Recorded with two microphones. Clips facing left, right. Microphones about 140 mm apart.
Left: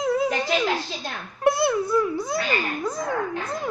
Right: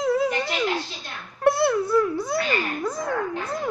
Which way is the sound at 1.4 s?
15° left (ahead or behind).